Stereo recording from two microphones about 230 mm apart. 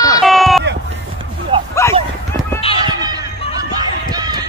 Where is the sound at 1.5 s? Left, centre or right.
Right.